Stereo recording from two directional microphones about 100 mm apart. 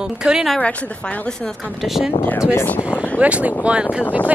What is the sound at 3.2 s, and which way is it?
Speech, 15° right (ahead or behind).